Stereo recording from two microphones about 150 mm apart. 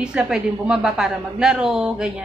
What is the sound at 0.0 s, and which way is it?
A woman's voice, 5° right (ahead or behind).